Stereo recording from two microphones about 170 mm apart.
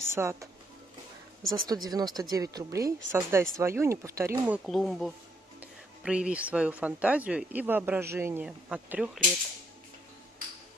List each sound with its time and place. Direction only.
0.1 s speech: 15° right (ahead or behind)
1.5 s a woman's voice: 20° right (ahead or behind)
4.6 s speech: centre (ahead or behind)